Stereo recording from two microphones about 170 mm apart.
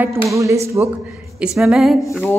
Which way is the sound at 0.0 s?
15° right (ahead or behind).